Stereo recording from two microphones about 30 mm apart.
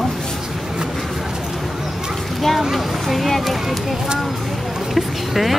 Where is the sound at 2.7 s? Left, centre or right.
Centre.